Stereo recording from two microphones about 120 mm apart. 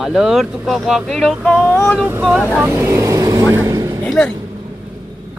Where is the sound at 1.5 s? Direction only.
15° right (ahead or behind).